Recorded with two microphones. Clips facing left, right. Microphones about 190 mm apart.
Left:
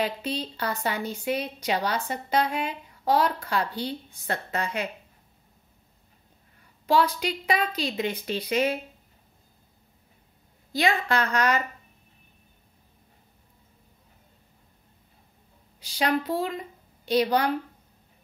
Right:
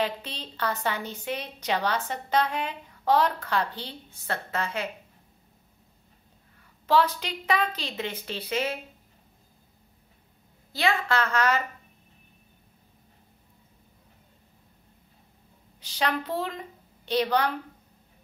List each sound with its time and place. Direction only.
0.0 s a woman's voice: 10° left (ahead or behind)
6.9 s a woman's voice: 10° left (ahead or behind)
10.7 s a woman's voice: 15° left (ahead or behind)
15.8 s a woman's voice: 10° left (ahead or behind)